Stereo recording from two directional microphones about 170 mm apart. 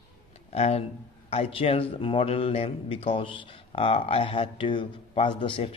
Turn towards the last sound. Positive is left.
turn(degrees=30)  # may be behind; listen again after turning